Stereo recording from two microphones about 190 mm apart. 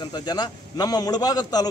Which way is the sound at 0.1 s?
20° left (ahead or behind).